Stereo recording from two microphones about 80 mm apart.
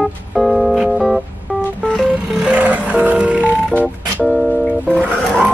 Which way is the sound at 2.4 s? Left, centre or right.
Centre.